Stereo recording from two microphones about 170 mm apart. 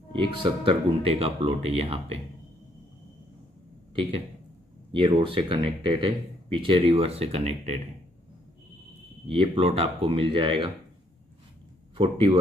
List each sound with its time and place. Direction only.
0.3 s speech: 30° right (ahead or behind)
3.9 s speech: 30° right (ahead or behind)
9.3 s speech: 35° right (ahead or behind)
12.0 s speech: 30° right (ahead or behind)